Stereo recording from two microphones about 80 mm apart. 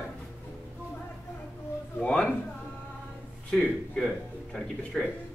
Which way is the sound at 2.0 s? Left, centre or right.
Centre.